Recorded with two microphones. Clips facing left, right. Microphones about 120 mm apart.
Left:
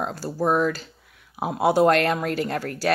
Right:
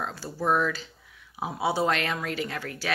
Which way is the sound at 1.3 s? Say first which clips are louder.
Left 7 dB; 60° left (ahead or behind).